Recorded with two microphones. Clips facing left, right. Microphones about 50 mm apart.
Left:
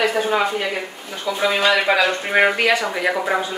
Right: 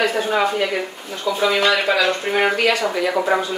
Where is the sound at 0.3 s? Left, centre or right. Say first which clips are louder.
Right 1 dB; centre.